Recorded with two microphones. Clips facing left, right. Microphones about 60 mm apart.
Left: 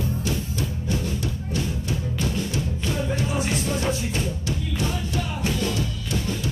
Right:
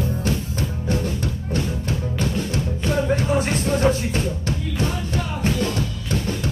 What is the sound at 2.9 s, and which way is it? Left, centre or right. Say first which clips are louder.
Music: right 7 dB; right.